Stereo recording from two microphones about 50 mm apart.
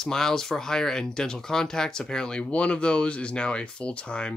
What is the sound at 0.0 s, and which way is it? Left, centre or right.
Speech, centre.